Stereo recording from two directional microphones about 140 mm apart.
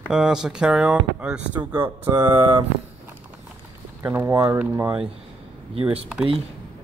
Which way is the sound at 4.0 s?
15° right (ahead or behind).